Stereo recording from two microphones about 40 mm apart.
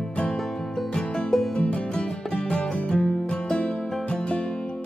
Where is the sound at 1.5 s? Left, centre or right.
Left.